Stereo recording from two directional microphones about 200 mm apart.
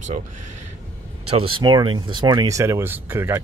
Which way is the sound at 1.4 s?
25° right (ahead or behind).